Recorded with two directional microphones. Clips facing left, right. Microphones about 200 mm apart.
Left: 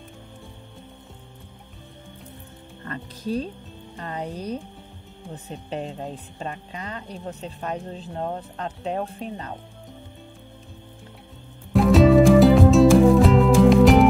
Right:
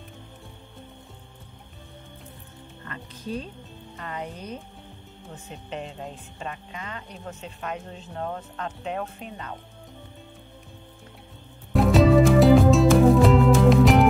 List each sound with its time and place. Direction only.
2.9 s speech: 35° left (ahead or behind)
5.7 s speech: 35° left (ahead or behind)
11.7 s music: centre (ahead or behind)